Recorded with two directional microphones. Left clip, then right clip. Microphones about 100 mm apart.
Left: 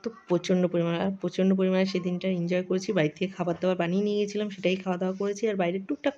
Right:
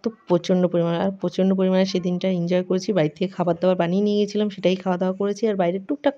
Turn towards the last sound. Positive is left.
turn(degrees=-25)  # may be behind; listen again after turning